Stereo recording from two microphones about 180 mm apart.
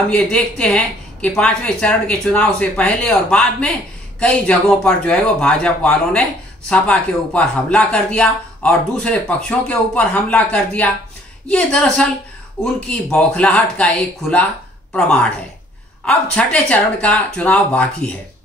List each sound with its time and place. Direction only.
0.1 s a man's voice: 5° left (ahead or behind)